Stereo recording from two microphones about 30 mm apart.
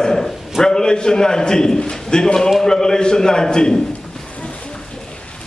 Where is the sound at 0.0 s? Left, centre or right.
Centre.